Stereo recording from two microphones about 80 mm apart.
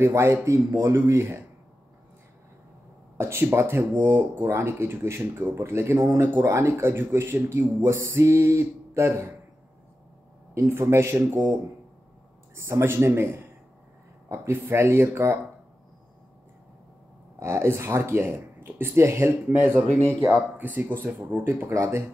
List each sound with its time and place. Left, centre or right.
0.0 s a man's voice: right
3.2 s a man's voice: right
10.5 s a man's voice: right
12.5 s a man's voice: right
17.4 s a man's voice: right